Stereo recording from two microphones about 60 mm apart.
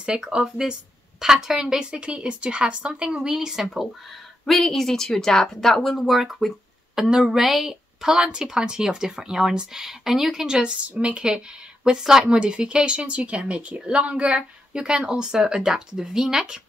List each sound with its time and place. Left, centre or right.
0.0 s speech: centre
4.5 s speech: centre
7.0 s speech: centre